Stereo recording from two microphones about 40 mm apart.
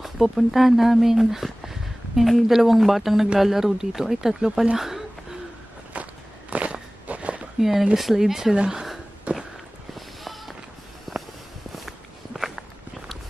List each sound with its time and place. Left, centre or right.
0.0 s speech: centre
4.7 s a sound: centre
5.9 s walk: right
7.6 s speech: centre
9.3 s walk: right
9.9 s a sound: centre
11.1 s walk: centre
12.4 s walk: centre